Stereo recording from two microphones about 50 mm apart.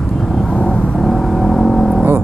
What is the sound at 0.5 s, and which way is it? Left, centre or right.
Vehicle, left.